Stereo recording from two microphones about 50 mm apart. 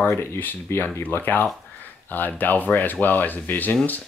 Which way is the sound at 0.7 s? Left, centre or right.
Left.